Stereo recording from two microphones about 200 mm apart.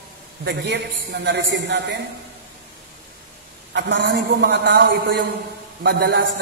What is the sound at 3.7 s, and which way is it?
A man's voice, 65° right (ahead or behind).